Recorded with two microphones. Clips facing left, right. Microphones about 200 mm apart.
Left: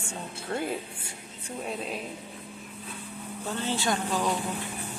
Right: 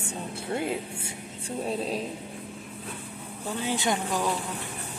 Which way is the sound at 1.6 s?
35° right (ahead or behind).